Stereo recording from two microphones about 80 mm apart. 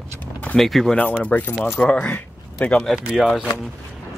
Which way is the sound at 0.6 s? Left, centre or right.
Centre.